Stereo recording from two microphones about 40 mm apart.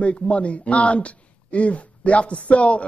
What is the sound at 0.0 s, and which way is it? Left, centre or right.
Speech, left.